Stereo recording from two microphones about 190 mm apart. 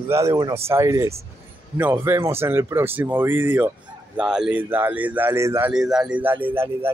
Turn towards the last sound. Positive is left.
turn(degrees=-10)  # may be behind; listen again after turning